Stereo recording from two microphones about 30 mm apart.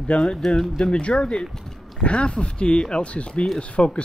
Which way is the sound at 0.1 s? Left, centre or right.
Left.